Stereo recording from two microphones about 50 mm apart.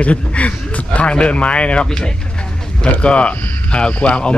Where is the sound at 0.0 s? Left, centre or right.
Left.